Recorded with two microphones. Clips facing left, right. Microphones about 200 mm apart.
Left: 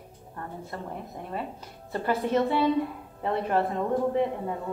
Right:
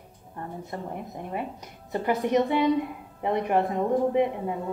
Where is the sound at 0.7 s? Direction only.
15° right (ahead or behind).